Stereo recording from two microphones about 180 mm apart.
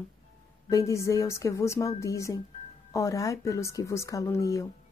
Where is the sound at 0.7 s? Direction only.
15° left (ahead or behind).